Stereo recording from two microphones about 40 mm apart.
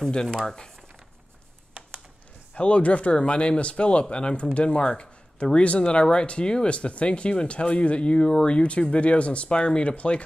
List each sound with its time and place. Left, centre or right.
2.5 s speech: left